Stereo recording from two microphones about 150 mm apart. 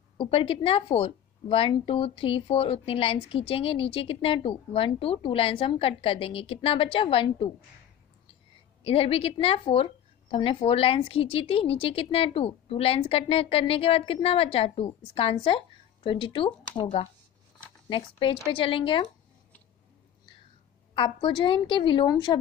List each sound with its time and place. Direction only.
0.2 s a woman's voice: 35° left (ahead or behind)
8.8 s a woman's voice: 40° left (ahead or behind)
20.9 s a woman's voice: 35° left (ahead or behind)